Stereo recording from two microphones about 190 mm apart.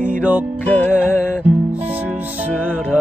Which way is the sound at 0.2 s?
10° right (ahead or behind).